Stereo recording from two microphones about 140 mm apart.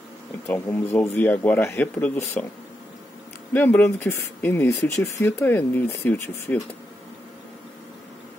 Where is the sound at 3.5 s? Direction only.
15° left (ahead or behind).